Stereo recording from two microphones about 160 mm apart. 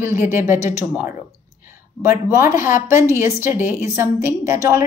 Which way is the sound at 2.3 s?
15° right (ahead or behind).